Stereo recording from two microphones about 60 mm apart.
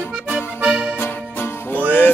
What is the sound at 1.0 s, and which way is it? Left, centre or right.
Music, left.